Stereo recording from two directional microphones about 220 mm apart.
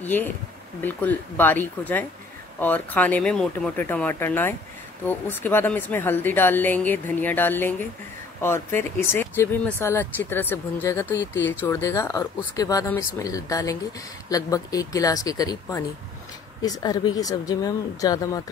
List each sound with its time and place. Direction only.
0.0 s speech: 10° left (ahead or behind)
11.1 s speech: 55° left (ahead or behind)
11.6 s speech: 15° left (ahead or behind)